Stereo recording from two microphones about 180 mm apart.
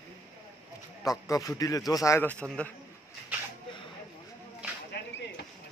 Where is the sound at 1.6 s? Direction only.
20° left (ahead or behind).